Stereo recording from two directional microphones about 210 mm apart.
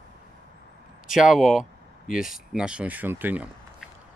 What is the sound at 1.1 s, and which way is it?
Speech, centre (ahead or behind).